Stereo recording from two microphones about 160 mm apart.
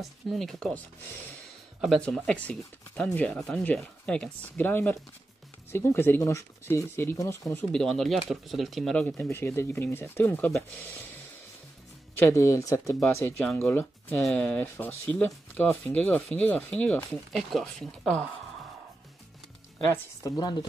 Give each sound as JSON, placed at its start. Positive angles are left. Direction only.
{"t": 0.0, "sound": "speech", "side_deg": 0}
{"t": 7.5, "sound": "speech", "side_deg": 5}
{"t": 12.2, "sound": "speech", "side_deg": 20}
{"t": 19.9, "sound": "speech", "side_deg": 20}